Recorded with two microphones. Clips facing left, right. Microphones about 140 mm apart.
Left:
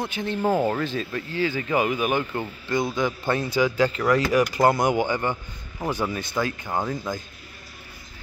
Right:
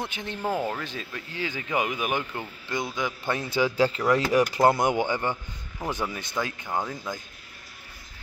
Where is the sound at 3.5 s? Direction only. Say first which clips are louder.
Even; 25° right (ahead or behind).